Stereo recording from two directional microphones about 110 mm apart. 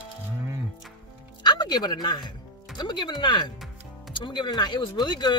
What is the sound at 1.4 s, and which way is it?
Speech, 40° left (ahead or behind).